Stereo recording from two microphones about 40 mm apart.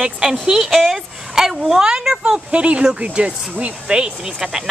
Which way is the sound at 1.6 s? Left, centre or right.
Centre.